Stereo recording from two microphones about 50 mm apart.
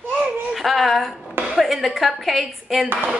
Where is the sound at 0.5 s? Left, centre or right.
Centre.